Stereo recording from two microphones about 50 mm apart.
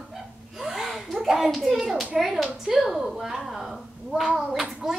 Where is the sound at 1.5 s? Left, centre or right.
Centre.